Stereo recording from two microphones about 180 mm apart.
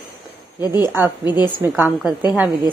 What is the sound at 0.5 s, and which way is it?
Speech, 20° left (ahead or behind).